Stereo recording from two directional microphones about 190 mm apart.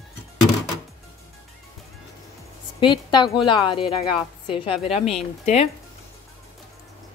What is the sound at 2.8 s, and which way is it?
Speech, 25° left (ahead or behind).